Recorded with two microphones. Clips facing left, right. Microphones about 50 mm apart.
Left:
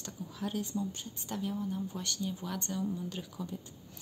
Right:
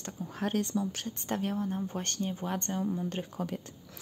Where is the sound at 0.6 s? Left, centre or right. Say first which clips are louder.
Right 4 dB; right.